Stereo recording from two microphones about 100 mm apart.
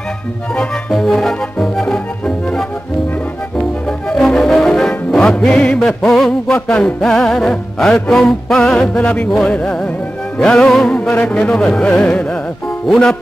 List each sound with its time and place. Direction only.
0.6 s music: 5° left (ahead or behind)
4.1 s music: 5° left (ahead or behind)